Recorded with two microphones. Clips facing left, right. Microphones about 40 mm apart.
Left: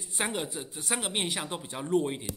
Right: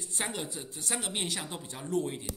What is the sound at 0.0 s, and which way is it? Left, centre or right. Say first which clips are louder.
Speech: left 4 dB; left.